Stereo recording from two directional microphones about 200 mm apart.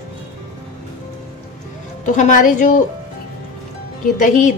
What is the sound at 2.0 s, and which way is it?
Speech, 40° left (ahead or behind).